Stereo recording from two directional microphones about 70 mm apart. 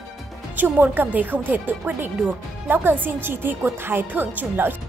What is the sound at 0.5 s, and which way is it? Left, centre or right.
A woman's voice, right.